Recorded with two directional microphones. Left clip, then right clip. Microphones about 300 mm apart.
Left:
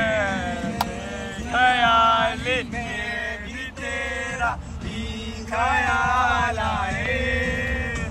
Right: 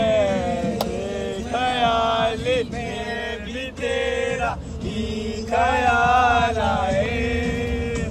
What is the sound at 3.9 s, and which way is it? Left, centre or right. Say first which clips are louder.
Music: right 5 dB; centre.